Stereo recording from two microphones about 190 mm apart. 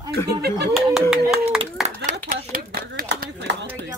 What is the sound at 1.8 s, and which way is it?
Speech, centre (ahead or behind).